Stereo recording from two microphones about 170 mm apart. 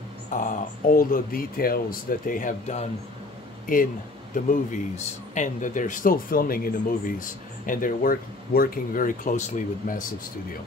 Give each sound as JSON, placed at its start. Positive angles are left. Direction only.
{"t": 0.3, "sound": "a man's voice", "side_deg": 50}